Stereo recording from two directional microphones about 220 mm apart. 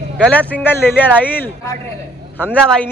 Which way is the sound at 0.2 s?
5° left (ahead or behind).